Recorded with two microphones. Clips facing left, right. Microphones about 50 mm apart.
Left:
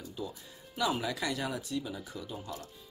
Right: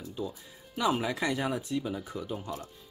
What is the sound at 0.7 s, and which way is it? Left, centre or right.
Speech, right.